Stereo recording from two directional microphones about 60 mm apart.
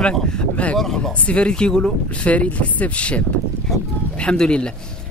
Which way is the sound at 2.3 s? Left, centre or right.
Left.